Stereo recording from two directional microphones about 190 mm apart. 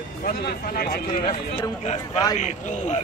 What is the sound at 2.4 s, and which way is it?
Speech, 35° left (ahead or behind).